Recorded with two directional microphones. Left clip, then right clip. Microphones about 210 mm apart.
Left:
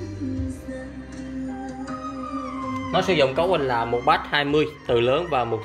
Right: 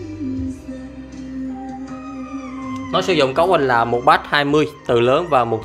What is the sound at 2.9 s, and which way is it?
Speech, 25° right (ahead or behind).